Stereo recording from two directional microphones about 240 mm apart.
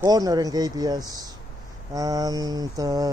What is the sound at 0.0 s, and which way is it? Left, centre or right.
Speech, centre.